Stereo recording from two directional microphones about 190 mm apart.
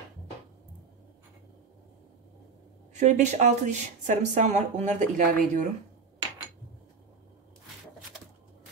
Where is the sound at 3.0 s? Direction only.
40° right (ahead or behind).